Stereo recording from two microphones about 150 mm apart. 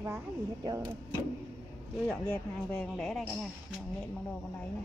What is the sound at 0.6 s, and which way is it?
Speech, 25° right (ahead or behind).